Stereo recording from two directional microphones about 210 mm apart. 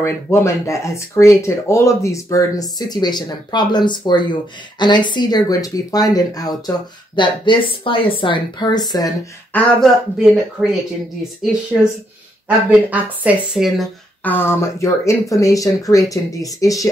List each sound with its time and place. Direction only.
0.0 s speech: 10° left (ahead or behind)
9.7 s speech: centre (ahead or behind)
14.2 s speech: 10° left (ahead or behind)